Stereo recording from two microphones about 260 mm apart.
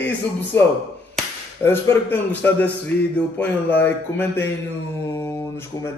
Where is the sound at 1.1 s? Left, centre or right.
Centre.